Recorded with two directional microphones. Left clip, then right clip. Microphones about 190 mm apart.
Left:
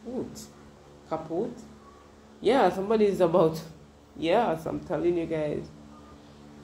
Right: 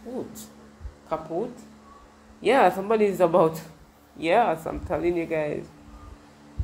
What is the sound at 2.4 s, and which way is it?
Speech, 30° right (ahead or behind).